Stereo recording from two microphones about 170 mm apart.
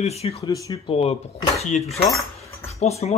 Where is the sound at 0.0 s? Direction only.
40° left (ahead or behind).